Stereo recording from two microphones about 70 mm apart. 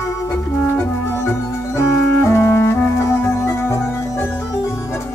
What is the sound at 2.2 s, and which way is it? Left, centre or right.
Clarinet, left.